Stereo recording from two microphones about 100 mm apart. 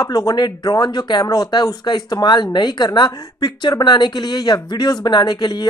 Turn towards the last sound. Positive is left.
turn(degrees=45)  # may be behind; listen again after turning